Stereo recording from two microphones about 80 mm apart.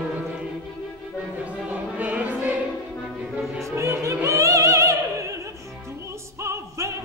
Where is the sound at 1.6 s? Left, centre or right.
Centre.